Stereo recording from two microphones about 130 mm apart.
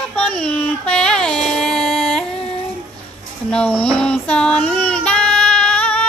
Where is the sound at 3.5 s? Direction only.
10° left (ahead or behind).